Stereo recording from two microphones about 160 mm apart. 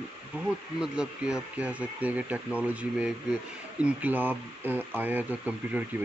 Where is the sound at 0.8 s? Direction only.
5° right (ahead or behind).